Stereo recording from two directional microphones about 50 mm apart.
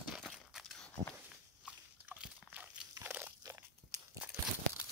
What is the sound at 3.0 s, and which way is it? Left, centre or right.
Crunch, right.